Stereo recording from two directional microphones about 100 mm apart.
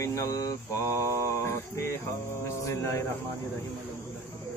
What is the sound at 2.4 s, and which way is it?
Mantra, 25° left (ahead or behind).